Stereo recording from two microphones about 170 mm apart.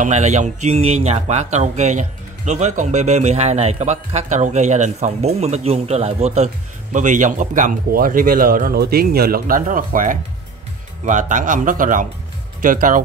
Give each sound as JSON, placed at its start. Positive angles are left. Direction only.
{"t": 0.0, "sound": "speech", "side_deg": -45}